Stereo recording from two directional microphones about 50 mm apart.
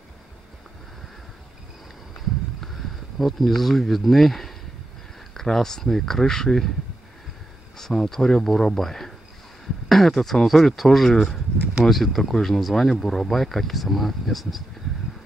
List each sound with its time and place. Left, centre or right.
2.6 s speech: centre
7.7 s speech: centre